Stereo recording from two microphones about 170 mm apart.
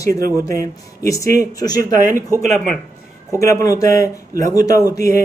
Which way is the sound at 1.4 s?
20° left (ahead or behind).